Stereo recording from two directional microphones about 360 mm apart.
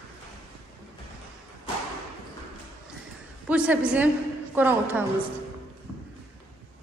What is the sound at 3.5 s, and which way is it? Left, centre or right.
A woman's voice, centre.